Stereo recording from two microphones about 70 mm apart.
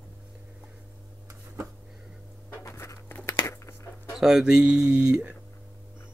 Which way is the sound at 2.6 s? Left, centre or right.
Left.